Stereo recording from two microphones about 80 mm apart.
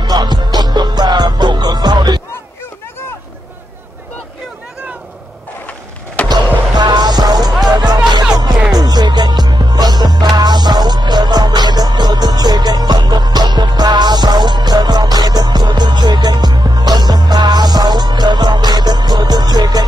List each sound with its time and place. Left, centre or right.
0.0 s music: right
6.2 s basketball bounce: right
7.6 s music: right